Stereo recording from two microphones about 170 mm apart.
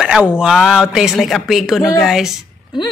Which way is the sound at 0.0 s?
5° right (ahead or behind).